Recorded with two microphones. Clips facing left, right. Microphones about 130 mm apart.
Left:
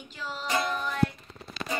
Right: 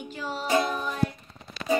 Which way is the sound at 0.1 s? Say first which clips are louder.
Right 5 dB; 45° right (ahead or behind).